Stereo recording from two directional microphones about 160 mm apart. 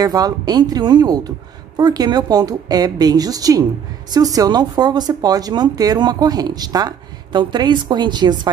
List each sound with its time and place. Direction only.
0.0 s speech: 25° right (ahead or behind)